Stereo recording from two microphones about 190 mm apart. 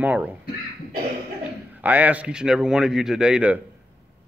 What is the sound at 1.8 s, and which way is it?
A man's voice, 10° right (ahead or behind).